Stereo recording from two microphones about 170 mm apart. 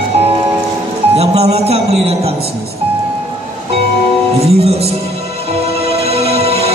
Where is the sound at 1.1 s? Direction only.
40° right (ahead or behind).